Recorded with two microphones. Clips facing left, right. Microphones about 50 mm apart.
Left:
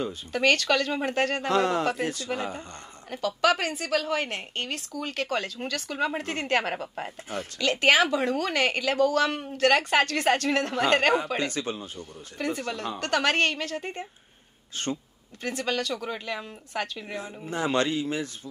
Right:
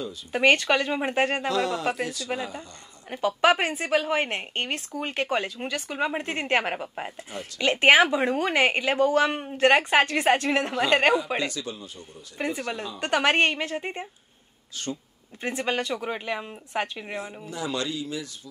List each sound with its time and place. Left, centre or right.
0.3 s a woman's voice: right
1.5 s speech: left
3.1 s a woman's voice: right
11.5 s speech: left
12.4 s a woman's voice: right
15.4 s a woman's voice: right
17.5 s speech: left